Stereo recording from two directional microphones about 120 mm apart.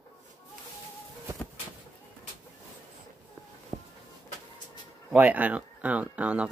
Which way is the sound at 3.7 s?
25° right (ahead or behind).